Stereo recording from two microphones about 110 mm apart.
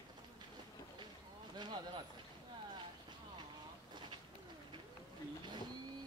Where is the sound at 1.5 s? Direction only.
45° right (ahead or behind).